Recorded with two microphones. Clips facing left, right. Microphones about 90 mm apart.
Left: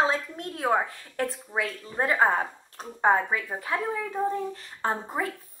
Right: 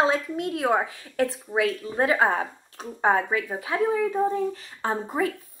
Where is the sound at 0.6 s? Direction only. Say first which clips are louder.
Even; 10° right (ahead or behind).